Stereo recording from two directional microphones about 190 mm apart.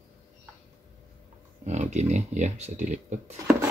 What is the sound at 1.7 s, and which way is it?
Speech, 35° right (ahead or behind).